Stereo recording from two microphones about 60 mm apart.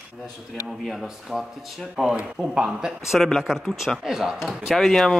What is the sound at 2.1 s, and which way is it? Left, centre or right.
Speech, centre.